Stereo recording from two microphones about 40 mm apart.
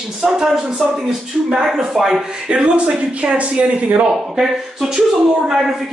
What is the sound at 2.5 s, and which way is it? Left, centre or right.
Speech, right.